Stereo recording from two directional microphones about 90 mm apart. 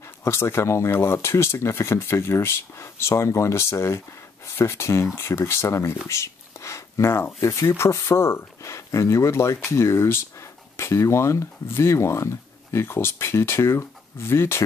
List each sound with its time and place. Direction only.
0.2 s speech: 30° left (ahead or behind)